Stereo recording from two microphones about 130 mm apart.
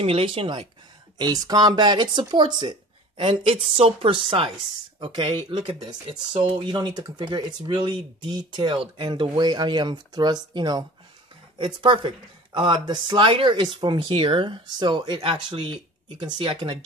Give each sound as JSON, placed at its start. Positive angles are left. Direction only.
{"t": 0.0, "sound": "speech", "side_deg": -45}